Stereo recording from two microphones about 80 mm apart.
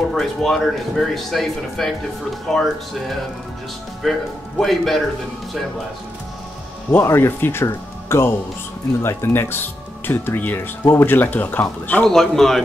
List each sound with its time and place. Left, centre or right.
0.1 s speech: centre
4.0 s speech: centre
6.9 s speech: left
12.0 s speech: centre